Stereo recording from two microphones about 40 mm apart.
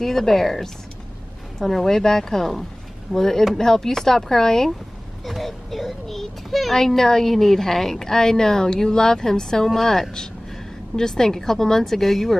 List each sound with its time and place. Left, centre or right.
0.0 s a child's voice: centre